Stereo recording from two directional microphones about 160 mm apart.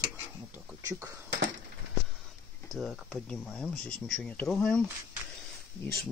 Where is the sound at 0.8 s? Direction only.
20° right (ahead or behind).